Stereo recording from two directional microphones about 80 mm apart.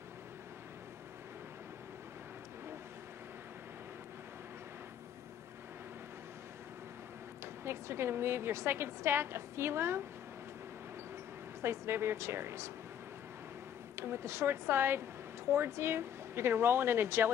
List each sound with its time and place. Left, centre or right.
7.6 s speech: right
11.6 s speech: right
13.9 s speech: right